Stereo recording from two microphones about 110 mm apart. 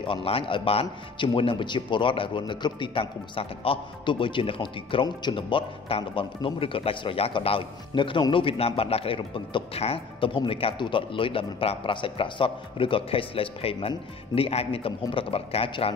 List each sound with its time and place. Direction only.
0.0 s speech: 55° left (ahead or behind)